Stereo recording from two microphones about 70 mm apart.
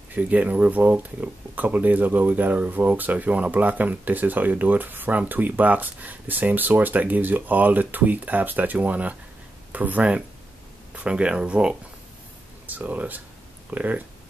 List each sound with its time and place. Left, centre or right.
0.1 s speech: right